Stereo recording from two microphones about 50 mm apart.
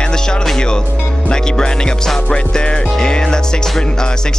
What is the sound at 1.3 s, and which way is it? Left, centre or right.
Speech, centre.